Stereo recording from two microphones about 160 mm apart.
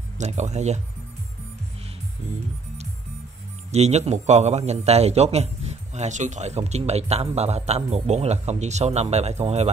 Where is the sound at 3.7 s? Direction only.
45° right (ahead or behind).